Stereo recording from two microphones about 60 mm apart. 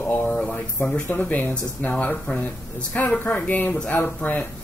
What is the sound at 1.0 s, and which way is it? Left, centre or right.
Speech, left.